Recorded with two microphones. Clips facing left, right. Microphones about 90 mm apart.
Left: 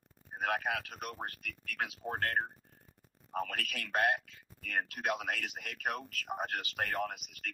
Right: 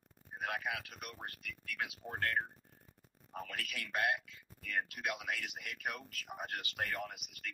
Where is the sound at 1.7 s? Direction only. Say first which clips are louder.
Left 4 dB; 45° left (ahead or behind).